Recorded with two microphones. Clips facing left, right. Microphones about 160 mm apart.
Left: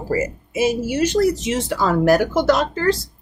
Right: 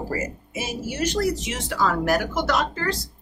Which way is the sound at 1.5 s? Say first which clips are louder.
Left 5 dB; 30° left (ahead or behind).